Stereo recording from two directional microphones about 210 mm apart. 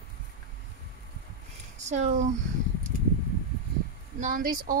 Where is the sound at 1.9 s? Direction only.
35° right (ahead or behind).